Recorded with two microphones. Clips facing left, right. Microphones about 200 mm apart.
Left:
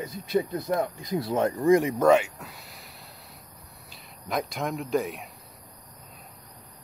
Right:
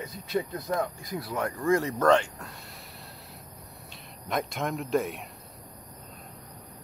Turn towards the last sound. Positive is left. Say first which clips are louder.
# even
turn(degrees=0)  # may be behind; listen again after turning